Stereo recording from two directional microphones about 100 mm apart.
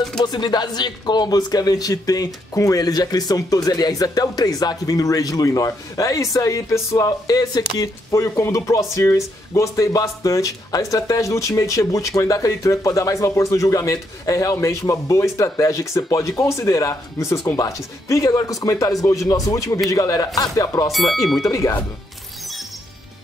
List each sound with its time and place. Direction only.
0.2 s speech: 45° left (ahead or behind)
20.9 s speech: centre (ahead or behind)
21.4 s speech: 30° left (ahead or behind)